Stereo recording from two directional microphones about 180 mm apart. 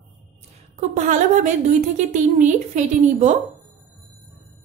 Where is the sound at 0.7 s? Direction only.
45° right (ahead or behind).